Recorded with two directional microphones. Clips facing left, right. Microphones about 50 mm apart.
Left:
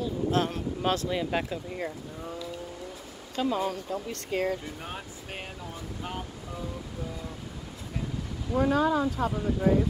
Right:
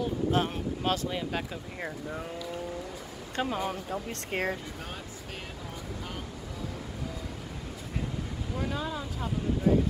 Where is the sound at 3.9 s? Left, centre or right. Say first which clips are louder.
Left 2 dB; right.